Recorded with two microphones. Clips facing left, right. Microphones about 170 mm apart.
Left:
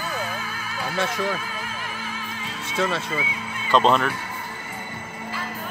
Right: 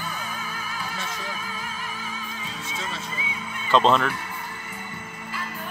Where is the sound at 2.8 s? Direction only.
85° left.